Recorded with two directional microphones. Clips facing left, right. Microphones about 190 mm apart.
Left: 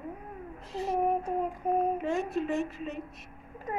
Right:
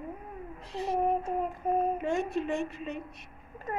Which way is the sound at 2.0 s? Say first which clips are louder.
Even; 5° left (ahead or behind).